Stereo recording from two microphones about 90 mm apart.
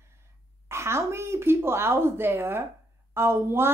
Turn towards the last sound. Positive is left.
turn(degrees=-25)  # may be behind; listen again after turning